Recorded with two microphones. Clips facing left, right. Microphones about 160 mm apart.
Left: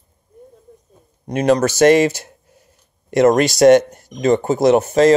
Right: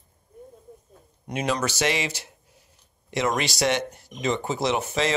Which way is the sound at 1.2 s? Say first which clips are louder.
Left 11 dB; 45° left (ahead or behind).